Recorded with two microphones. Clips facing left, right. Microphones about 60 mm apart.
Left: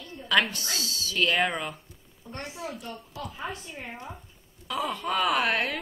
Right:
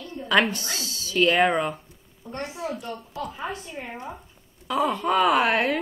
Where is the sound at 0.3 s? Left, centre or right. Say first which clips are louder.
Right 3 dB; centre.